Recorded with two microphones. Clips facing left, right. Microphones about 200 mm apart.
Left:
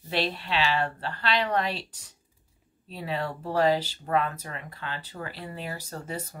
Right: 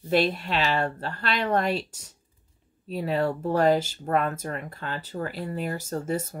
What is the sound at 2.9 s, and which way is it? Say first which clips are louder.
Speech: right 6 dB; 45° right (ahead or behind).